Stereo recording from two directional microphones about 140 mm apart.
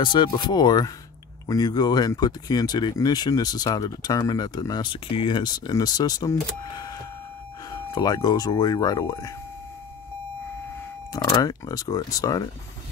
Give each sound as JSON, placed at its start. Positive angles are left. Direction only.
{"t": 0.0, "sound": "speech", "side_deg": 35}
{"t": 11.1, "sound": "speech", "side_deg": 25}